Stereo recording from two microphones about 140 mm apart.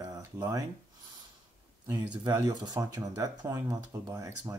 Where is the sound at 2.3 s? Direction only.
25° right (ahead or behind).